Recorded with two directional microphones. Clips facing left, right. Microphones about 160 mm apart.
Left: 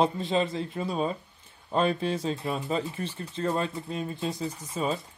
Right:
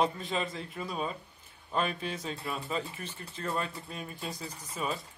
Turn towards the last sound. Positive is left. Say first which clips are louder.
# left 6 dB
turn(degrees=25)  # may be behind; listen again after turning